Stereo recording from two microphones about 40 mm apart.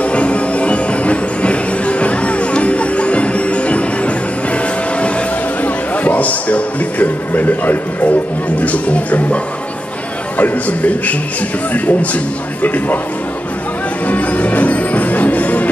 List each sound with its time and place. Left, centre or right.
0.0 s music: left
5.6 s music: left
8.5 s a man's voice: left
14.0 s music: left